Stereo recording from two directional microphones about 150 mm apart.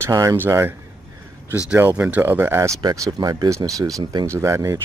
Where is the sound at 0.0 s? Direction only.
25° right (ahead or behind).